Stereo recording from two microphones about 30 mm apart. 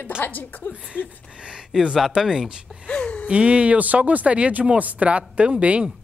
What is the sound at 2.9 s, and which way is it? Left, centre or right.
Speech, left.